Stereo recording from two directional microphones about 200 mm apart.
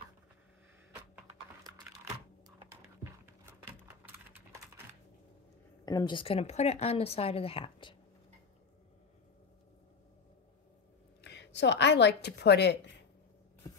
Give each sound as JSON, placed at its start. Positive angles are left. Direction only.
{"t": 3.8, "sound": "a sound", "side_deg": -10}
{"t": 5.9, "sound": "speech", "side_deg": 20}
{"t": 11.1, "sound": "a woman's voice", "side_deg": 60}